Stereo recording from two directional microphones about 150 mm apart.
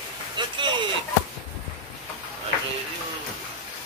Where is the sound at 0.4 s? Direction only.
30° right (ahead or behind).